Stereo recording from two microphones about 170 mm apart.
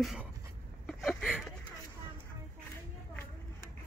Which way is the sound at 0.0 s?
Centre (ahead or behind).